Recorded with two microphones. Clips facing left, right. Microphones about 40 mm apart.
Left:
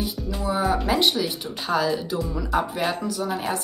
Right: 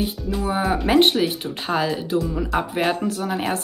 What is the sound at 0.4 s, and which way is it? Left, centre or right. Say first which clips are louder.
Speech: right 1 dB; right.